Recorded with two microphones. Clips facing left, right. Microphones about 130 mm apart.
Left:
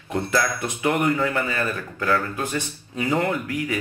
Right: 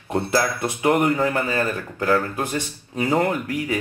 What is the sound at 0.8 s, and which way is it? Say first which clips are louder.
Speech: right 3 dB; 35° right (ahead or behind).